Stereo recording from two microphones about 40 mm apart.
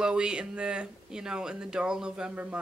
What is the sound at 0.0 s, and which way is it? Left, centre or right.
Speech, right.